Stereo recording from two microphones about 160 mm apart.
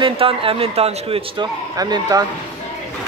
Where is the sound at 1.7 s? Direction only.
25° right (ahead or behind).